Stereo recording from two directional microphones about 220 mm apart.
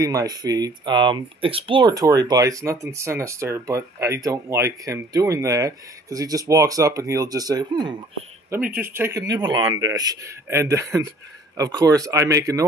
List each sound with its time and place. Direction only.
0.0 s speech: 15° right (ahead or behind)
8.5 s speech: 5° right (ahead or behind)